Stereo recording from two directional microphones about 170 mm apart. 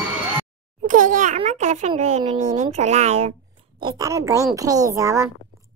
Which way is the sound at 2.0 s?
40° right (ahead or behind).